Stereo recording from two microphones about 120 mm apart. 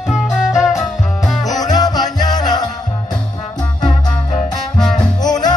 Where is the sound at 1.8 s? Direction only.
35° left (ahead or behind).